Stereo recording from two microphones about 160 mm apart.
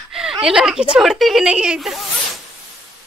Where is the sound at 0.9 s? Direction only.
Centre (ahead or behind).